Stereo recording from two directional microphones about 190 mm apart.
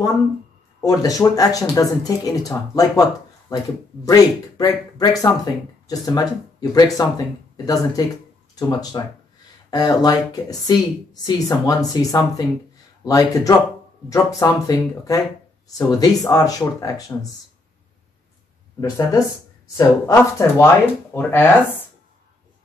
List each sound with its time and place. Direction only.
0.7 s speech: 20° left (ahead or behind)
18.8 s speech: 20° left (ahead or behind)